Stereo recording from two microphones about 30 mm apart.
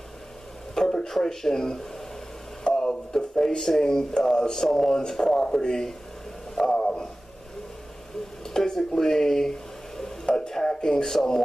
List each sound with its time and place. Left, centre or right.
0.7 s speech: centre
2.6 s speech: left
3.8 s speech: left
6.7 s a sound: left
8.5 s speech: centre